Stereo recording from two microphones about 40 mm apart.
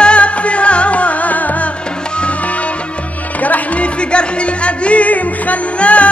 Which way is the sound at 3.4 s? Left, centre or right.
Left.